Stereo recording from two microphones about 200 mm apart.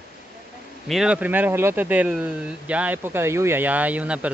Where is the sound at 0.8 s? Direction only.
5° right (ahead or behind).